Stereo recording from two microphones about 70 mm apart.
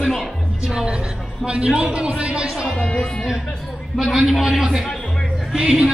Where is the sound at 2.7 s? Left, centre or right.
Centre.